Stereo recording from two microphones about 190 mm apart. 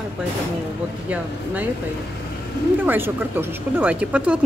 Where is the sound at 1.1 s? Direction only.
10° right (ahead or behind).